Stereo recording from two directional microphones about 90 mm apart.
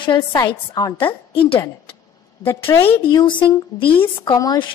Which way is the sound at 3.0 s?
60° left (ahead or behind).